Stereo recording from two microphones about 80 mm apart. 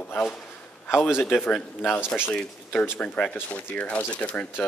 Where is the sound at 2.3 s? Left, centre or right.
Centre.